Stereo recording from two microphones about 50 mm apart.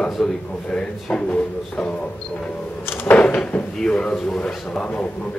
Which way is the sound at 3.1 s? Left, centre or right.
Left.